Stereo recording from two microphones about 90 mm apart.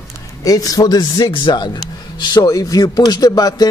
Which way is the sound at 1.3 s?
60° left (ahead or behind).